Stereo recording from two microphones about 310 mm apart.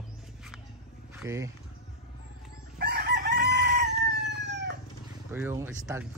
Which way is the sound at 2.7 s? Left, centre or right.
Right.